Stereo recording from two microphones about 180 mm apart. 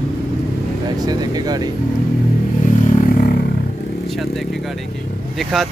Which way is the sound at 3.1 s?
55° left (ahead or behind).